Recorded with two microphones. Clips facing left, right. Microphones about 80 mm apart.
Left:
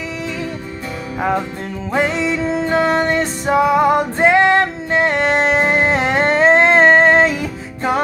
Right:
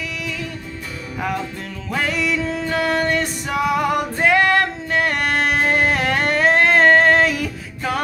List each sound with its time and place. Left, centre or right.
1.9 s music: left